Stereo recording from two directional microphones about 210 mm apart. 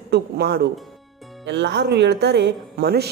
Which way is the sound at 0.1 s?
50° right (ahead or behind).